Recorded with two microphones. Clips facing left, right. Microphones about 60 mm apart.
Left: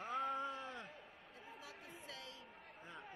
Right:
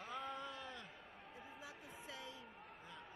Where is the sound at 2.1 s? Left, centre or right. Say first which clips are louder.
Right 3 dB; right.